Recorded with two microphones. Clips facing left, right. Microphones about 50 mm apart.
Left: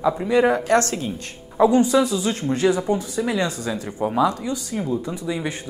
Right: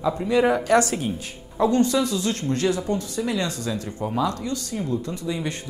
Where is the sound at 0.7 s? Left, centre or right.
Centre.